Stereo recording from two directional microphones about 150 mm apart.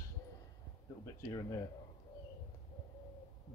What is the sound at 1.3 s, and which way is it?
Speech, 25° left (ahead or behind).